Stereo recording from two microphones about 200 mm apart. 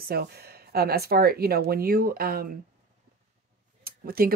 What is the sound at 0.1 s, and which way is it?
Speech, 55° right (ahead or behind).